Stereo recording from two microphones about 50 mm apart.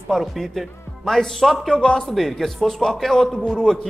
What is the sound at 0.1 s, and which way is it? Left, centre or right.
Speech, centre.